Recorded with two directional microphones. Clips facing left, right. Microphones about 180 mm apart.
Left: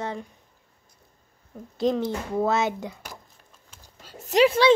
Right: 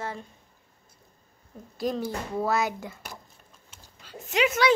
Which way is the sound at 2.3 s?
20° left (ahead or behind).